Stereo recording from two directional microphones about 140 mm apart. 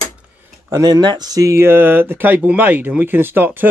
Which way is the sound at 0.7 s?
30° right (ahead or behind).